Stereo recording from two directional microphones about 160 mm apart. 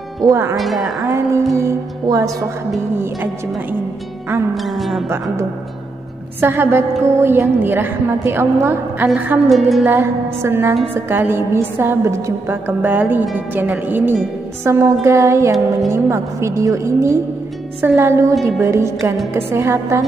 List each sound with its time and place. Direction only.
0.2 s a woman's voice: 20° right (ahead or behind)
0.6 s music: centre (ahead or behind)
1.0 s music: 20° right (ahead or behind)
4.6 s music: centre (ahead or behind)
5.1 s music: 20° right (ahead or behind)
6.4 s a woman's voice: 15° right (ahead or behind)
9.5 s music: centre (ahead or behind)
9.8 s a woman's voice: 15° right (ahead or behind)